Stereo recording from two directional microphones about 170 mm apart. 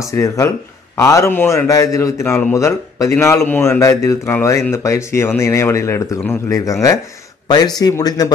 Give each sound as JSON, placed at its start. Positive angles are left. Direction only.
{"t": 0.0, "sound": "a man's voice", "side_deg": 20}